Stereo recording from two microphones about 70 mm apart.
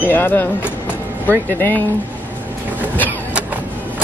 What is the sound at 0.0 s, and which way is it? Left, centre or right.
Speech, left.